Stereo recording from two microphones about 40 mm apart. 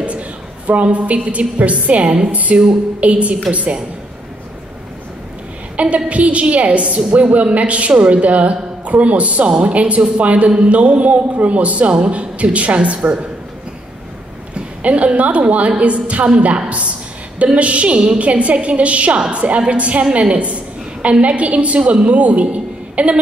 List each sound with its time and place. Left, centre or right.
0.7 s a woman's voice: right
5.8 s a woman's voice: right
14.5 s a woman's voice: right